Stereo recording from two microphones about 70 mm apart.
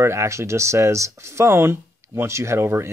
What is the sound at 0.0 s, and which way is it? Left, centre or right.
Speech, right.